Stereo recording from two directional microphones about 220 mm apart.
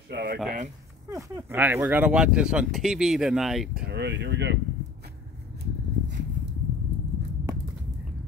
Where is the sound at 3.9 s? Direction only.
50° right (ahead or behind).